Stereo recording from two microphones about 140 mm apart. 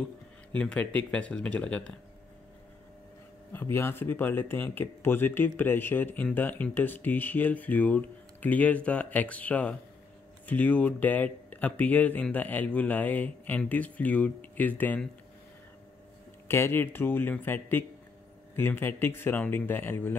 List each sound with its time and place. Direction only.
0.6 s speech: 10° left (ahead or behind)
3.7 s speech: 15° left (ahead or behind)
16.4 s speech: 15° left (ahead or behind)